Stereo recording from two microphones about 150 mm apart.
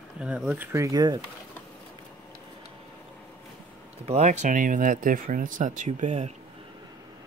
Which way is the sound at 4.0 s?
45° right (ahead or behind).